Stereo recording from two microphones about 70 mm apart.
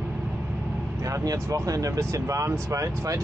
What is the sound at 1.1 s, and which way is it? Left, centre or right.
Speech, right.